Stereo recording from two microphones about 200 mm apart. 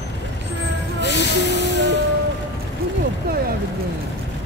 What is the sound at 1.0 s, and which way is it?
Music, 60° left (ahead or behind).